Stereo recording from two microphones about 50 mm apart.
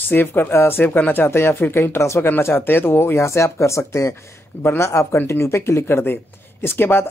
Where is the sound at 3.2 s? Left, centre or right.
Left.